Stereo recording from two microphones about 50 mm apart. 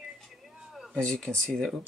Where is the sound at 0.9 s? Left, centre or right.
Centre.